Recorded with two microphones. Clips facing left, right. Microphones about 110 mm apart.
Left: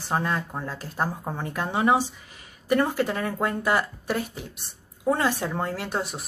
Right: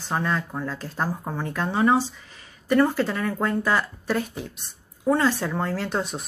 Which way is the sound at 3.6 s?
15° left (ahead or behind).